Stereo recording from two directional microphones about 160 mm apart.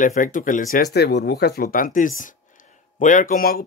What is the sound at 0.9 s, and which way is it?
Speech, 90° left.